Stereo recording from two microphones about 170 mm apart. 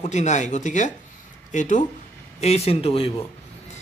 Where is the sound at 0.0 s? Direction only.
45° left (ahead or behind).